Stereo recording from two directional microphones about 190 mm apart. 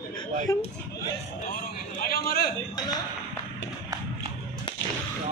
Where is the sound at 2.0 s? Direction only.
55° left (ahead or behind).